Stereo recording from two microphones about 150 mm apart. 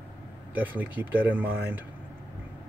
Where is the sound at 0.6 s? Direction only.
10° right (ahead or behind).